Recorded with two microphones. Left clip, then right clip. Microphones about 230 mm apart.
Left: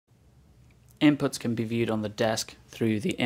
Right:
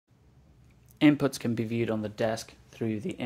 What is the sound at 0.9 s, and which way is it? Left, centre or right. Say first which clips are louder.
Speech: even; centre.